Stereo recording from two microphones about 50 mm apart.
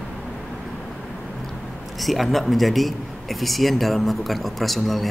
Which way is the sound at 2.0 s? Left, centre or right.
Centre.